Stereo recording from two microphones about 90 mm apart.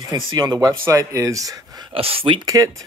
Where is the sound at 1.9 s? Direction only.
90° right.